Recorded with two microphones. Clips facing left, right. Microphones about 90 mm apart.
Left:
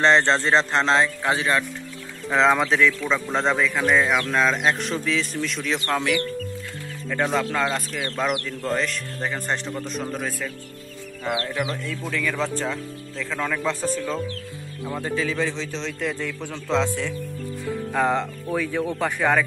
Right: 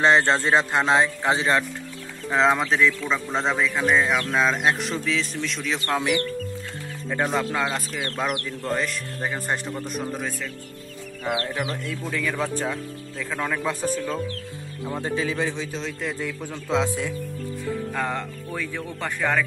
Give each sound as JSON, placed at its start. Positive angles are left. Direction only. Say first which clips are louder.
{"t": 0.0, "sound": "a man's voice", "louder": "even", "side_deg": -5}
{"t": 1.0, "sound": "speech", "louder": "right 1 dB", "side_deg": -25}
{"t": 2.3, "sound": "speech", "louder": "left 1 dB", "side_deg": 0}
{"t": 7.4, "sound": "speech", "louder": "left 1 dB", "side_deg": -5}
{"t": 11.3, "sound": "a man's voice", "louder": "left 2 dB", "side_deg": -25}
{"t": 14.9, "sound": "a man's voice", "louder": "even", "side_deg": -20}
{"t": 17.6, "sound": "speech", "louder": "left 5 dB", "side_deg": 15}